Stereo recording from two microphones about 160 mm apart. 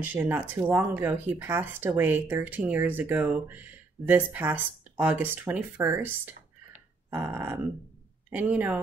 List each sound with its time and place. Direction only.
0.0 s speech: 10° right (ahead or behind)